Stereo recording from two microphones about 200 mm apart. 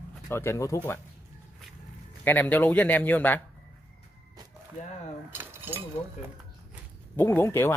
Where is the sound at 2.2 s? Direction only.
10° left (ahead or behind).